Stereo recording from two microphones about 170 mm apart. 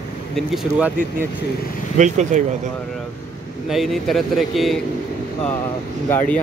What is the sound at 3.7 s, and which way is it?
Speech, centre (ahead or behind).